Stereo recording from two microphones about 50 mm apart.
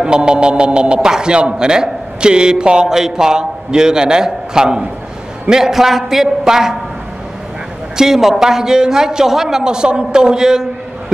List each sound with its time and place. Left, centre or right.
0.0 s a man's voice: centre
7.9 s a man's voice: centre